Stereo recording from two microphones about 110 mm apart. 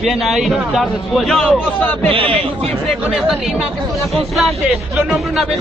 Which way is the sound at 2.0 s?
55° right (ahead or behind).